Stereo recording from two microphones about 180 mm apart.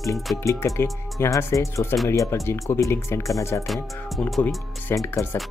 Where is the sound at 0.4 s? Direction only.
15° left (ahead or behind).